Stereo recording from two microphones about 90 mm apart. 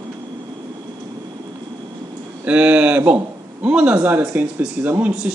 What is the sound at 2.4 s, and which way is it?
Speech, 15° right (ahead or behind).